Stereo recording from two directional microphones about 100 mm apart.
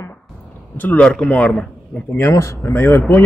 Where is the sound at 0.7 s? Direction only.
15° left (ahead or behind).